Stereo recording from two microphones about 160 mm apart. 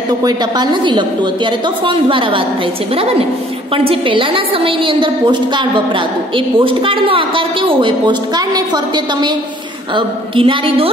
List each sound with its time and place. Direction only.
0.2 s a woman's voice: 25° right (ahead or behind)